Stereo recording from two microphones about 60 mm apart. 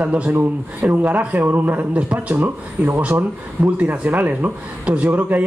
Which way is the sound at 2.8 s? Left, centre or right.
Centre.